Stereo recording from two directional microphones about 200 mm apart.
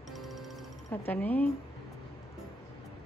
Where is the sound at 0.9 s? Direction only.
10° left (ahead or behind).